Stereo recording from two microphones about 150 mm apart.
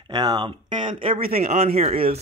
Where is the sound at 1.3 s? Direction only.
50° right (ahead or behind).